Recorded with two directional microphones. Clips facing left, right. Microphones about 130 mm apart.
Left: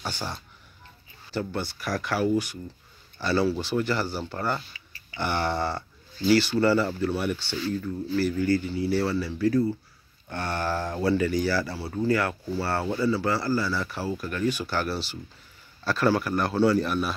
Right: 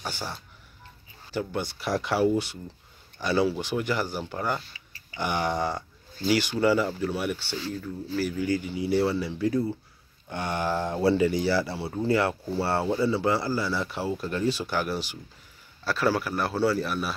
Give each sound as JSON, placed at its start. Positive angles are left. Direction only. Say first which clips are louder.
{"t": 0.0, "sound": "speech", "louder": "left 1 dB", "side_deg": -10}
{"t": 14.7, "sound": "speech", "louder": "even", "side_deg": -15}